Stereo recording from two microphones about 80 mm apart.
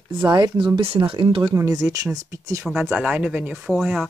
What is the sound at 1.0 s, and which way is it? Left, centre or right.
Speech, right.